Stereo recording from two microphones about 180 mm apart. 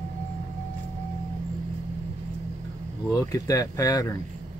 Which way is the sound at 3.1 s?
20° left (ahead or behind).